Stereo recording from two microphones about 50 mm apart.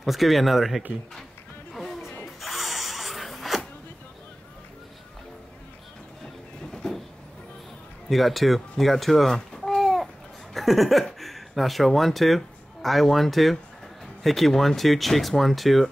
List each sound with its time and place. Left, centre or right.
0.0 s speech: centre
1.7 s music: centre
2.2 s a sound: centre
6.2 s music: centre
8.1 s a child's voice: centre
10.5 s a sound: centre
11.1 s speech: centre